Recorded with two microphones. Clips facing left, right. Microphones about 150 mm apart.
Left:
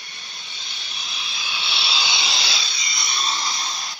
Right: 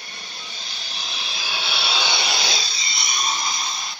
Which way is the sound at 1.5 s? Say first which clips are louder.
Right 3 dB; 50° right (ahead or behind).